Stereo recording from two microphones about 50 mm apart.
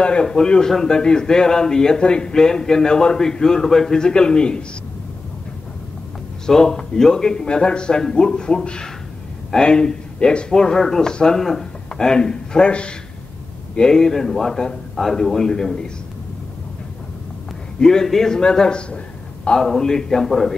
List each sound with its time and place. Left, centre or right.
0.0 s a man's voice: centre
6.4 s a man's voice: centre
17.7 s a man's voice: centre